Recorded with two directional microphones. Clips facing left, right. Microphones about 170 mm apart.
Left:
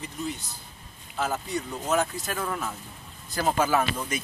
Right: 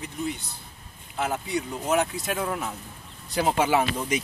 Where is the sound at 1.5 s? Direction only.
15° right (ahead or behind).